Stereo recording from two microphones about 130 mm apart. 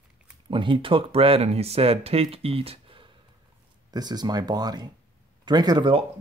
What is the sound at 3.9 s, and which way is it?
Speech, 30° right (ahead or behind).